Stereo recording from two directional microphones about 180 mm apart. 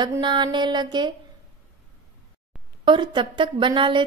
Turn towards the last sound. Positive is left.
turn(degrees=-25)  # may be behind; listen again after turning